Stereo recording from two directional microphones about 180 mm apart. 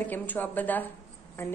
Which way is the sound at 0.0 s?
10° left (ahead or behind).